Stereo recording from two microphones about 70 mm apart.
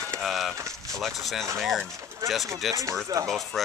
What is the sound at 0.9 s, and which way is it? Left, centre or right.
Speech, centre.